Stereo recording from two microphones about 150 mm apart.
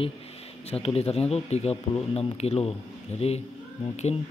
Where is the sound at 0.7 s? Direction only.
40° left (ahead or behind).